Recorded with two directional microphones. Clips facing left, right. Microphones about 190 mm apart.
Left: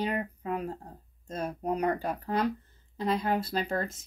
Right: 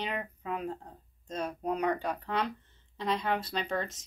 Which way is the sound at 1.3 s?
10° left (ahead or behind).